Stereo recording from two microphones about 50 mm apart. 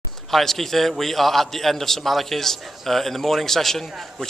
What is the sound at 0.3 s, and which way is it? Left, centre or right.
A man's voice, centre.